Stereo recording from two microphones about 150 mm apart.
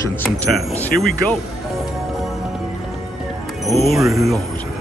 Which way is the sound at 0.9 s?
80° left.